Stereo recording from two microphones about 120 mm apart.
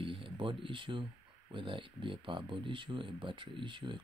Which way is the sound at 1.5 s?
45° right (ahead or behind).